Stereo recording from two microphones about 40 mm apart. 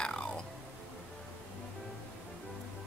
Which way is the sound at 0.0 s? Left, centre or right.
Centre.